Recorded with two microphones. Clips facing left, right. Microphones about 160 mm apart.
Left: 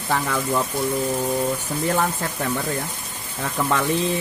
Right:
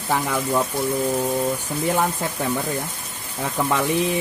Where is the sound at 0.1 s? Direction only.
10° right (ahead or behind).